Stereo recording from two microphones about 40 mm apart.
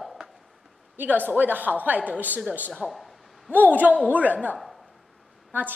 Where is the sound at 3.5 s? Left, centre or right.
Right.